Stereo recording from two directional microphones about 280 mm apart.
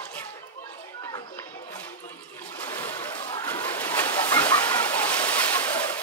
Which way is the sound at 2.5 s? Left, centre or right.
Centre.